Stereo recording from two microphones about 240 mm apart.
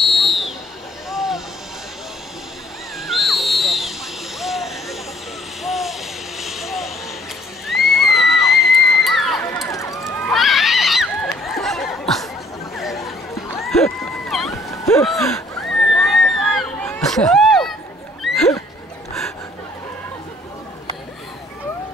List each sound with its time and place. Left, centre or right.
0.0 s a sound: centre
1.1 s vehicle: centre
3.1 s a sound: centre
4.4 s vehicle: centre
7.6 s crowd: centre
9.7 s run: centre
10.3 s neigh: centre
11.4 s snicker: centre
12.7 s chatter: centre
13.6 s run: centre
14.0 s a sound: centre